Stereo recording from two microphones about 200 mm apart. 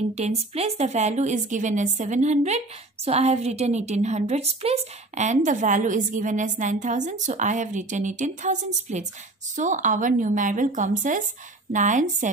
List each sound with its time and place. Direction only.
0.1 s a woman's voice: 30° right (ahead or behind)